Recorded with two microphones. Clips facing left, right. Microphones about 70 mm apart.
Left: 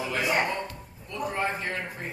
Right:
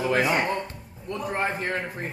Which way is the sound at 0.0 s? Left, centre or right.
Right.